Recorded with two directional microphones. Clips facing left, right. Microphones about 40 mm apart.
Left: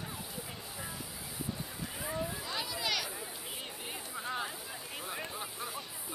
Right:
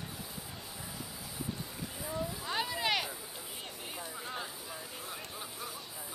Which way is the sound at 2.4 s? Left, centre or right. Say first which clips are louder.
Right 3 dB; right.